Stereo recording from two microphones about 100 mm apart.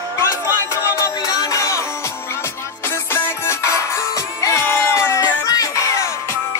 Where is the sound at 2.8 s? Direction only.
25° left (ahead or behind).